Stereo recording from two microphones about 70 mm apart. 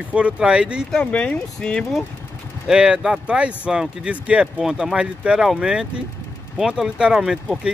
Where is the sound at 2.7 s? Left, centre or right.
Centre.